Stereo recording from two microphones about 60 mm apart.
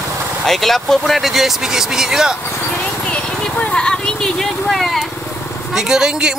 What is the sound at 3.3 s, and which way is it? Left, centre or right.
Vehicle, centre.